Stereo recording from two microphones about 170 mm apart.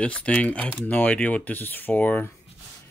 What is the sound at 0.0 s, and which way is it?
Speech, 5° left (ahead or behind).